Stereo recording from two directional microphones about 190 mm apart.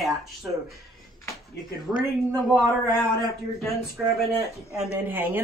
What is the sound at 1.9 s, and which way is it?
Speech, 5° left (ahead or behind).